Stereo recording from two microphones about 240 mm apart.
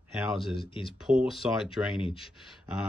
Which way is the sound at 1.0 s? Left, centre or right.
Centre.